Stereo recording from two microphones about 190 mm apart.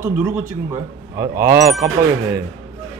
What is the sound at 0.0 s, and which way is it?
A man's voice, 15° right (ahead or behind).